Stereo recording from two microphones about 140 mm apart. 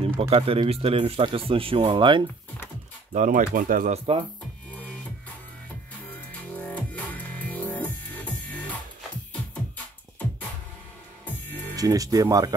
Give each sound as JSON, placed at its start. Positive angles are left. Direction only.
{"t": 0.2, "sound": "speech", "side_deg": -45}
{"t": 3.1, "sound": "speech", "side_deg": -65}
{"t": 3.9, "sound": "speech", "side_deg": -45}
{"t": 6.5, "sound": "music", "side_deg": 10}
{"t": 11.7, "sound": "speech", "side_deg": -25}